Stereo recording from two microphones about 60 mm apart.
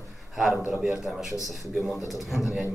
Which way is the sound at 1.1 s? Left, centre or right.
Centre.